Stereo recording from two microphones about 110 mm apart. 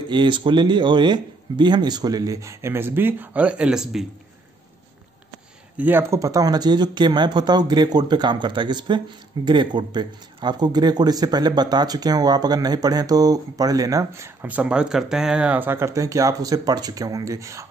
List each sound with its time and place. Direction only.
0.1 s speech: 45° right (ahead or behind); by 4.0 s 5° right (ahead or behind)
5.8 s speech: 20° right (ahead or behind)
14.5 s speech: 10° right (ahead or behind); by 17.6 s 30° right (ahead or behind)